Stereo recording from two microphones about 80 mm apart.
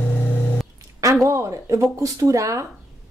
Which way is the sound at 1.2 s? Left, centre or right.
Right.